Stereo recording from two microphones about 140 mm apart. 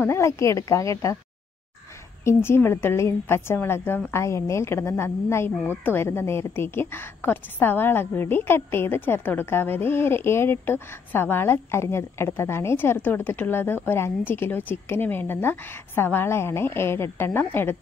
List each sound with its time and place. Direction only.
0.0 s a woman's voice: 20° left (ahead or behind)
2.2 s a woman's voice: 15° left (ahead or behind)